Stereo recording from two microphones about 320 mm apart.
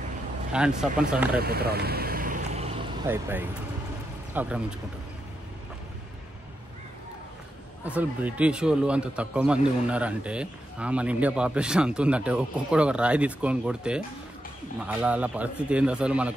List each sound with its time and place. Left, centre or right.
0.5 s speech: centre
1.3 s vehicle: right
3.1 s speech: centre
7.8 s speech: centre